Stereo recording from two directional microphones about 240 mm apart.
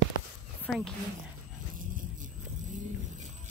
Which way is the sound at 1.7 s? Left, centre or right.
Right.